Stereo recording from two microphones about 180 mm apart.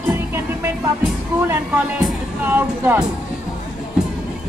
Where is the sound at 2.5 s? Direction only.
10° right (ahead or behind).